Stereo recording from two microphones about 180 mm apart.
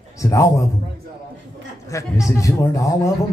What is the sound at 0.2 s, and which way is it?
Speech, 15° left (ahead or behind).